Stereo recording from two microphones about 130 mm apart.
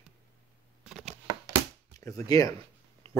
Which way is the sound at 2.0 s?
25° left (ahead or behind).